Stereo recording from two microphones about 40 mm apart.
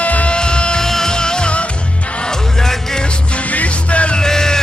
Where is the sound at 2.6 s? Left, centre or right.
Centre.